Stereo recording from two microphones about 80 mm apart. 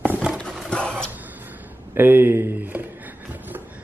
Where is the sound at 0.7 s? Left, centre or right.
Centre.